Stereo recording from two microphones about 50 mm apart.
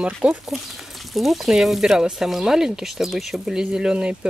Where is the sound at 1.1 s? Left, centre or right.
Centre.